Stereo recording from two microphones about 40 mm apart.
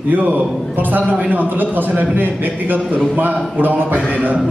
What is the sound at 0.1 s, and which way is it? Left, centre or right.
A man's voice, right.